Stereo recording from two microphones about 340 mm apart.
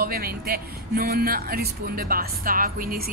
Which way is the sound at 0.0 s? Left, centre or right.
Right.